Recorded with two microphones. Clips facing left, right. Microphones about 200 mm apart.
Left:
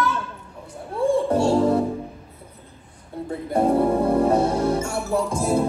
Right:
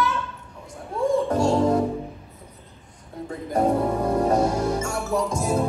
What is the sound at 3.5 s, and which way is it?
Music, 30° left (ahead or behind).